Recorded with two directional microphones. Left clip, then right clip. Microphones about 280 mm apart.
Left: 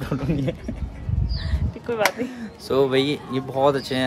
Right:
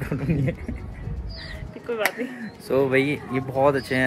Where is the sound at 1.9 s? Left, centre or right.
Left.